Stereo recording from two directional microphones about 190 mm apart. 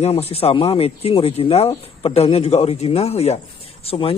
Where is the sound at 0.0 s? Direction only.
30° left (ahead or behind).